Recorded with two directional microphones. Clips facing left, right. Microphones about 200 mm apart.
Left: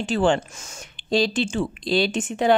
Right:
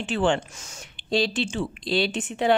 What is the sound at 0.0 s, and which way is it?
Speech, 40° left (ahead or behind).